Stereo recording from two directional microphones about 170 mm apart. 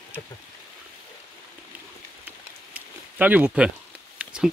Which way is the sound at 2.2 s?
10° right (ahead or behind).